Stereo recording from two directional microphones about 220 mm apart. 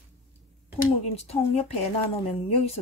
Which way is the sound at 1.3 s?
30° left (ahead or behind).